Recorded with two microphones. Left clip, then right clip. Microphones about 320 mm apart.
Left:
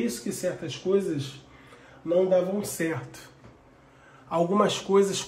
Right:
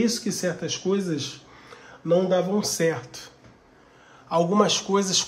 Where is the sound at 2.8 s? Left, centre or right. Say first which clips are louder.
Right 6 dB; centre.